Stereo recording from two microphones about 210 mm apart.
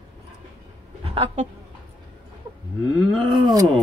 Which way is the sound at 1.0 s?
25° right (ahead or behind).